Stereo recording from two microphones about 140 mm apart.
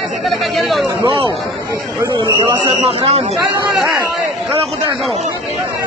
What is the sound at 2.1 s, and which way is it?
Speech, 35° right (ahead or behind).